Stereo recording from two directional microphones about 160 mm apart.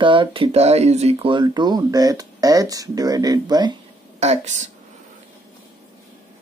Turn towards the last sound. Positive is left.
turn(degrees=-45)  # may be behind; listen again after turning